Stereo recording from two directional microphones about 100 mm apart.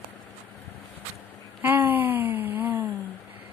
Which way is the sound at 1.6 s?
20° right (ahead or behind).